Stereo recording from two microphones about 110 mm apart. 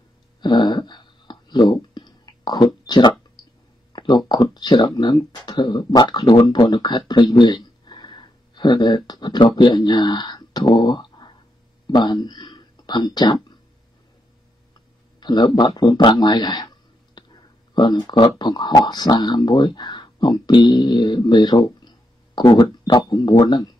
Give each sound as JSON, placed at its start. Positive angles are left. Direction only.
{"t": 0.4, "sound": "a sound", "side_deg": 40}
{"t": 4.3, "sound": "a man's voice", "side_deg": 40}
{"t": 15.1, "sound": "a man's voice", "side_deg": 40}